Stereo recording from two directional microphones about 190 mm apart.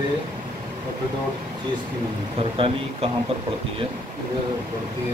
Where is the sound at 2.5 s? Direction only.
30° right (ahead or behind).